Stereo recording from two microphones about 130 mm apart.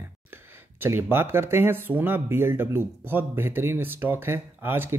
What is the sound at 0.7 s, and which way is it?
Speech, 20° right (ahead or behind).